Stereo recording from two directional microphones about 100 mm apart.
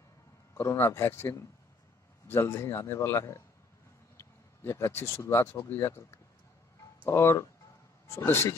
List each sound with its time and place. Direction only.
0.6 s speech: 25° left (ahead or behind)
4.6 s speech: 25° left (ahead or behind)
7.1 s speech: 25° left (ahead or behind)